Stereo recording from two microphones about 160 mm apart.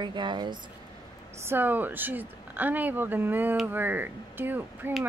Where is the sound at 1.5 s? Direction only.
10° right (ahead or behind).